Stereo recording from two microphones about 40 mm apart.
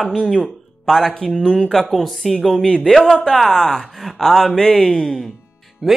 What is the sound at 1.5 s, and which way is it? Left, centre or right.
Speech, centre.